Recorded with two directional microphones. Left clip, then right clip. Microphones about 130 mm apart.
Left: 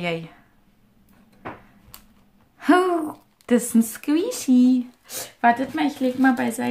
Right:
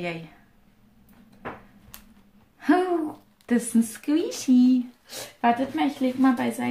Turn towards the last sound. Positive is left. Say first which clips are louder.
# left 3 dB
turn(degrees=55)  # may be behind; listen again after turning